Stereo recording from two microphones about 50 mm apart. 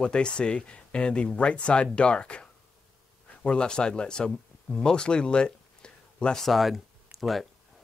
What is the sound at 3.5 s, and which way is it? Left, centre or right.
Speech, centre.